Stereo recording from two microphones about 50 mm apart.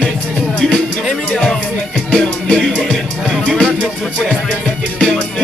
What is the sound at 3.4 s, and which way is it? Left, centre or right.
Music, centre.